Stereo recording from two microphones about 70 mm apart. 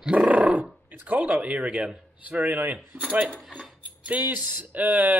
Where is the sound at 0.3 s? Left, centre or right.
Centre.